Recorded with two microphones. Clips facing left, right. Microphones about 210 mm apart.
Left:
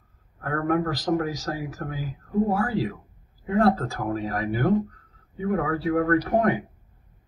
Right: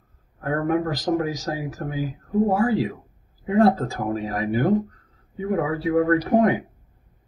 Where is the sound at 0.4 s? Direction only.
20° right (ahead or behind).